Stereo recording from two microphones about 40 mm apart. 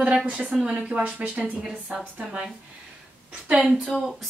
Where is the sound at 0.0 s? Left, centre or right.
Right.